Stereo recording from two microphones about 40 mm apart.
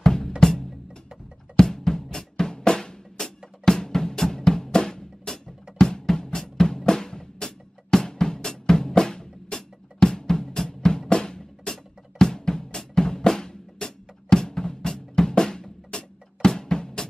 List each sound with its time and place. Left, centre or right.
0.0 s drum: centre
0.4 s music: centre
2.5 s drum: centre